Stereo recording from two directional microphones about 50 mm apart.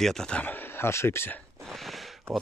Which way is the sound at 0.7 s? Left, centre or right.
Left.